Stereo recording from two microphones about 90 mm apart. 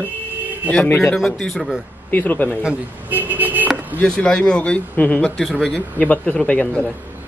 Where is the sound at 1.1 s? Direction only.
5° left (ahead or behind).